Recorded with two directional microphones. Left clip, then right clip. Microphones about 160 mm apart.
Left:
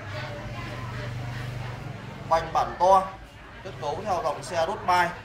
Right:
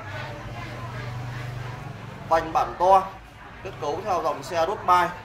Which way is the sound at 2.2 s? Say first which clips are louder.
Right 2 dB; 5° left (ahead or behind).